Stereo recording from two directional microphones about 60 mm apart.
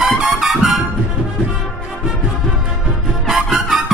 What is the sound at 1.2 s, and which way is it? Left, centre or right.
Music, right.